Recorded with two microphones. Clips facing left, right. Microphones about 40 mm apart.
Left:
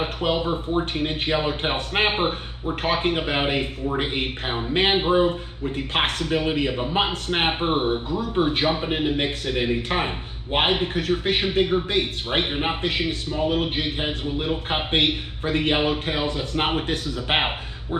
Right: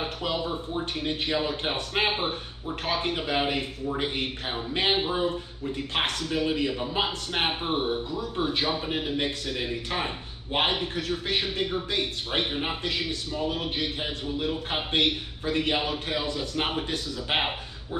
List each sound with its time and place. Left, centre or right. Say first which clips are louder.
0.0 s speech: left 6 dB; left